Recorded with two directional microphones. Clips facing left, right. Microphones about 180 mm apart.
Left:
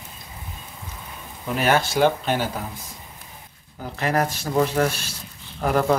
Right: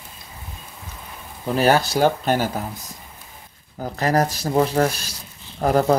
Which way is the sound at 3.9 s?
40° right (ahead or behind).